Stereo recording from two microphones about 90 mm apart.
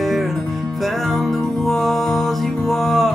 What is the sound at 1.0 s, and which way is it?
Music, centre (ahead or behind).